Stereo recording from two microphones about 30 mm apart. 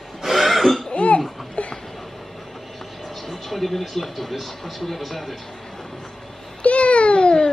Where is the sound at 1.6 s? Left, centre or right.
Left.